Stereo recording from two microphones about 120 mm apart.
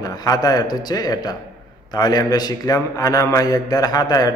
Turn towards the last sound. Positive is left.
turn(degrees=35)  # may be behind; listen again after turning